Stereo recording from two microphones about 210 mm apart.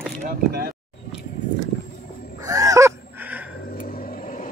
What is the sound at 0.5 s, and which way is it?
Speech, 45° right (ahead or behind).